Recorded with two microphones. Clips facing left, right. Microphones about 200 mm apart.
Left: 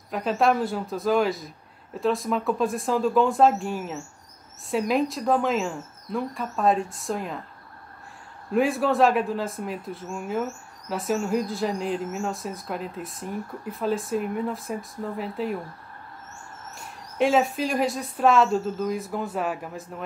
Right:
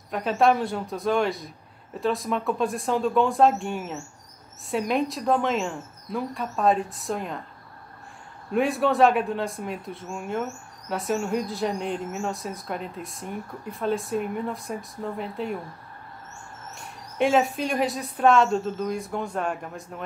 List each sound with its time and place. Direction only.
0.1 s speech: centre (ahead or behind)
8.5 s speech: centre (ahead or behind)
16.7 s speech: centre (ahead or behind)